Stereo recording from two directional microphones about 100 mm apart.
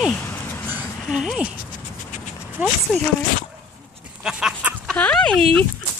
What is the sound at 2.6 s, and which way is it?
Speech, 15° right (ahead or behind).